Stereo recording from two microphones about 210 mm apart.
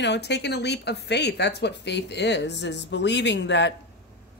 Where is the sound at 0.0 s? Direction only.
55° left (ahead or behind).